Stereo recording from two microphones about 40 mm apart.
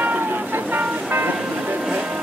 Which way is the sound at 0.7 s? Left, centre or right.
Right.